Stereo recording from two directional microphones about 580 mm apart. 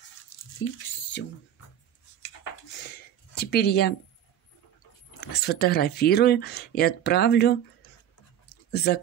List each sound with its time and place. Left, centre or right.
3.3 s speech: centre
5.2 s speech: centre
8.7 s speech: centre